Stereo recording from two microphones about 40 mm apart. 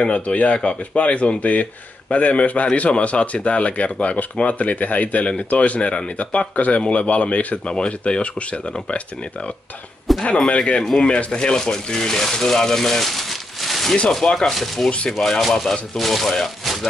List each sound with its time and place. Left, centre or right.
0.0 s a man's voice: left
7.6 s speech: left
10.1 s a sound: centre
10.8 s speech: centre